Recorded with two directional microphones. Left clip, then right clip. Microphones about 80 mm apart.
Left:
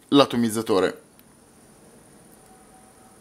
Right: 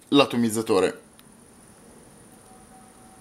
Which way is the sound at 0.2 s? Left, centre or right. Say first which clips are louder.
Left 1 dB; centre.